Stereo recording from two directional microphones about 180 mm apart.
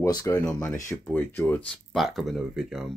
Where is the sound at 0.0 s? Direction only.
20° left (ahead or behind).